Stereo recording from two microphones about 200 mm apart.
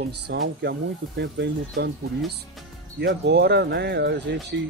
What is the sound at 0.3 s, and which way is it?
Speech, 60° right (ahead or behind).